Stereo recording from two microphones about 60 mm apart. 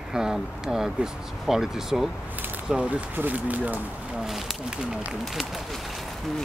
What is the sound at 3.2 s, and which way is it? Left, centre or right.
Speech, right.